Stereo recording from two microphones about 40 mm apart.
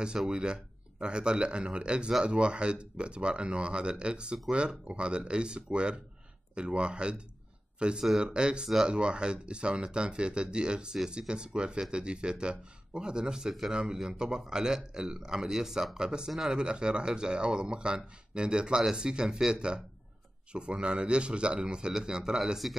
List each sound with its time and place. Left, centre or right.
0.3 s a man's voice: right
20.5 s a man's voice: right
22.6 s speech: centre